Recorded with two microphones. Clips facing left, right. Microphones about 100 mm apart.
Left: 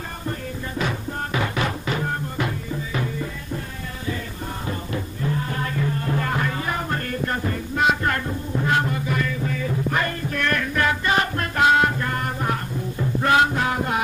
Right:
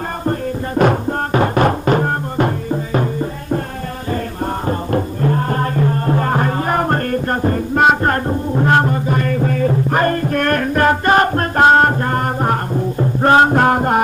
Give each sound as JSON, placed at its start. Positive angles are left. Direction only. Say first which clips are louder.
{"t": 0.3, "sound": "music", "louder": "right 10 dB", "side_deg": -50}
{"t": 4.6, "sound": "music", "louder": "right 9 dB", "side_deg": -50}
{"t": 9.3, "sound": "music", "louder": "right 10 dB", "side_deg": -50}